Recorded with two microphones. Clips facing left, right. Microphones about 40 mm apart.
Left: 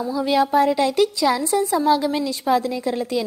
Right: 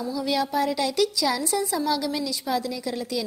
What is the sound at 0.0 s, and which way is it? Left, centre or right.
A woman's voice, left.